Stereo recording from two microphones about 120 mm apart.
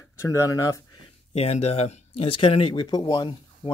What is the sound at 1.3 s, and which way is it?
Speech, 60° left (ahead or behind).